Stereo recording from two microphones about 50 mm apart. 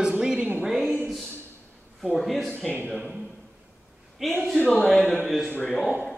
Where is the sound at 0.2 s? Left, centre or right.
Centre.